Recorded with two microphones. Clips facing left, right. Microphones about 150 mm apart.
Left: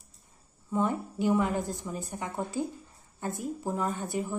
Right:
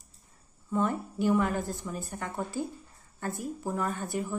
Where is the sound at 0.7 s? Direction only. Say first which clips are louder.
Even; 20° left (ahead or behind).